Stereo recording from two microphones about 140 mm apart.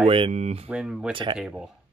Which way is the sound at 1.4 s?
5° right (ahead or behind).